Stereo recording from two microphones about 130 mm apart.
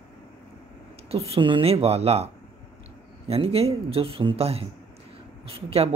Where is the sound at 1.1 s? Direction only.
50° right (ahead or behind).